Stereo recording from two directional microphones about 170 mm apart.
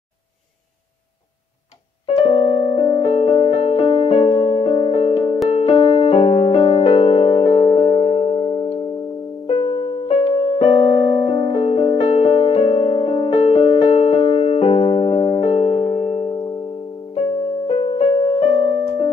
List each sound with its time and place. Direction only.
2.0 s music: 35° left (ahead or behind)